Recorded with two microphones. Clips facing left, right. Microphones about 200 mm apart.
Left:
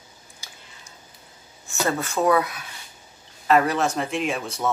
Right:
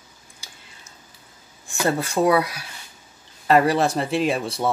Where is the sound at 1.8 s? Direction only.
35° right (ahead or behind).